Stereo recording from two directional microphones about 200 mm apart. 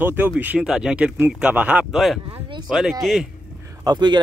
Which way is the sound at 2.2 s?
25° right (ahead or behind).